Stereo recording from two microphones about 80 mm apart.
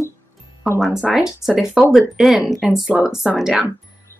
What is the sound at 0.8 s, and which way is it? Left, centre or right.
Speech, centre.